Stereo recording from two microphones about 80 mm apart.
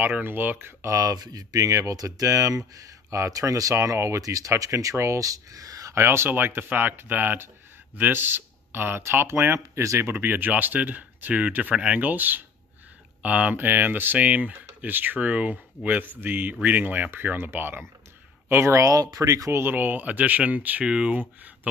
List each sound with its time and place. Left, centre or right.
0.0 s speech: right
0.9 s speech: right
6.0 s speech: right
18.9 s speech: right
19.6 s speech: right